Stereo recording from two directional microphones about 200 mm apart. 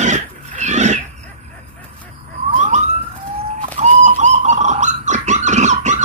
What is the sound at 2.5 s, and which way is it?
Police car, 35° right (ahead or behind).